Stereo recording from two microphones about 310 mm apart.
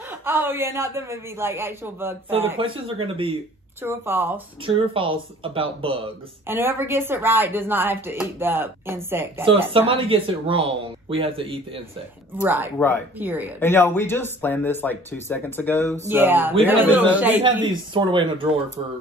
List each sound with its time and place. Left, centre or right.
0.2 s speech: centre
12.4 s speech: centre
13.6 s speech: centre
16.1 s a man's voice: centre
17.4 s speech: centre